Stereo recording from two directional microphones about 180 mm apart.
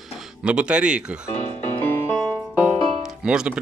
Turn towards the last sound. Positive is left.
turn(degrees=-5)  # may be behind; listen again after turning